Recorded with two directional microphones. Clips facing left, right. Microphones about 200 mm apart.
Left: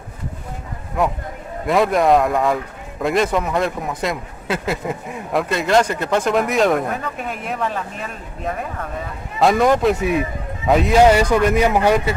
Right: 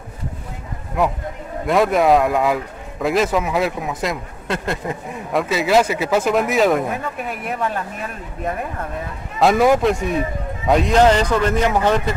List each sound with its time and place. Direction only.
1.7 s a man's voice: centre (ahead or behind)
9.4 s a man's voice: 5° right (ahead or behind)